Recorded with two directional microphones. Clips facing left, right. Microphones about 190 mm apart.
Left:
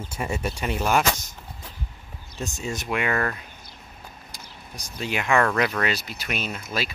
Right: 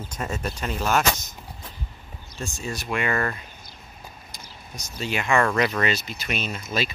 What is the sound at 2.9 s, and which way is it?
Speech, 5° left (ahead or behind).